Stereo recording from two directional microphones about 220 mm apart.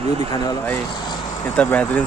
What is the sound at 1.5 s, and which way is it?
Speech, 5° left (ahead or behind).